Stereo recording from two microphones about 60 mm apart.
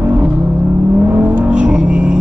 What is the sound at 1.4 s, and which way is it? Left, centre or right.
Music, centre.